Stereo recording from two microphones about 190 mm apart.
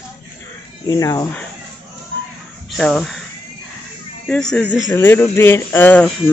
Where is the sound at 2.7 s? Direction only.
Centre (ahead or behind).